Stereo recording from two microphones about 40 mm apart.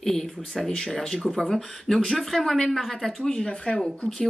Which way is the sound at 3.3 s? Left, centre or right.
Left.